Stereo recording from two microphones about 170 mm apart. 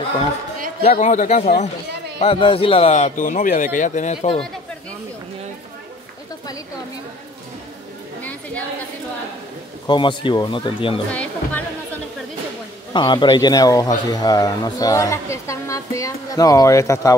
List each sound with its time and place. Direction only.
0.8 s speech: 50° left (ahead or behind)
2.2 s speech: 35° left (ahead or behind)
8.2 s chatter: 10° left (ahead or behind)
9.8 s a man's voice: 30° left (ahead or behind)
11.1 s speech: 10° left (ahead or behind)
12.9 s a man's voice: 25° left (ahead or behind)